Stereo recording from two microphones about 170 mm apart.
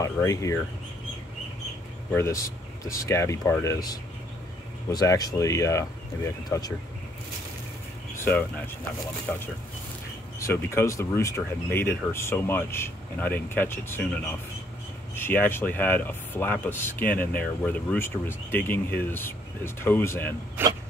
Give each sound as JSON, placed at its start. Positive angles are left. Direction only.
{"t": 0.0, "sound": "speech", "side_deg": 20}
{"t": 2.1, "sound": "speech", "side_deg": 15}
{"t": 8.2, "sound": "speech", "side_deg": 10}
{"t": 20.6, "sound": "a sound", "side_deg": -10}